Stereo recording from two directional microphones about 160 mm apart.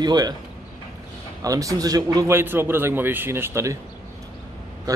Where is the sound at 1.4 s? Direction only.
20° right (ahead or behind).